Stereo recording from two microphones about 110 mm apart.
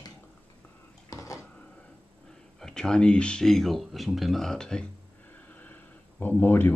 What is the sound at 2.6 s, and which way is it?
Speech, 5° left (ahead or behind).